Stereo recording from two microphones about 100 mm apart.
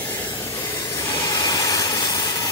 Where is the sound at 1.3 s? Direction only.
40° left (ahead or behind).